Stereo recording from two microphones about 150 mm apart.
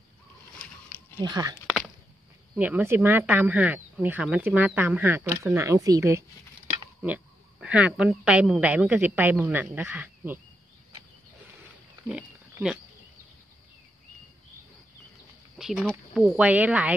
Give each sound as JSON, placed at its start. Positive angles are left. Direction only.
{"t": 1.2, "sound": "speech", "side_deg": -25}
{"t": 2.5, "sound": "a woman's voice", "side_deg": -10}
{"t": 7.6, "sound": "a woman's voice", "side_deg": -5}
{"t": 12.1, "sound": "speech", "side_deg": -10}
{"t": 15.5, "sound": "a woman's voice", "side_deg": 0}